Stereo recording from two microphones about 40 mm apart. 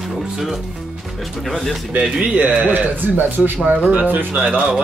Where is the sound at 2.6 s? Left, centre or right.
Right.